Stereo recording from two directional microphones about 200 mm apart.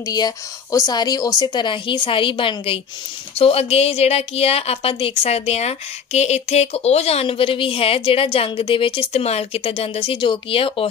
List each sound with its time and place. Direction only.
0.0 s a woman's voice: 20° left (ahead or behind)